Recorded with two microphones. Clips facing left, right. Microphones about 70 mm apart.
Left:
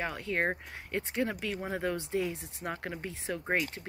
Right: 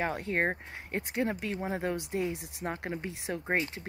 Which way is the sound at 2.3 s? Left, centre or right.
Right.